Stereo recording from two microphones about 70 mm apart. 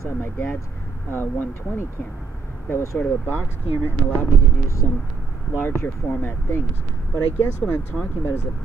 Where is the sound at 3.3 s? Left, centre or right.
Right.